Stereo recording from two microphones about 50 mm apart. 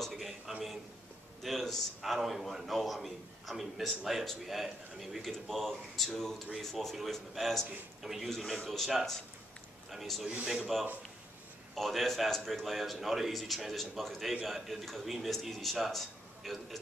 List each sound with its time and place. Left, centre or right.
0.0 s a sound: centre
1.4 s a man's voice: centre
8.0 s a man's voice: centre
10.2 s a man's voice: right
10.7 s a man's voice: centre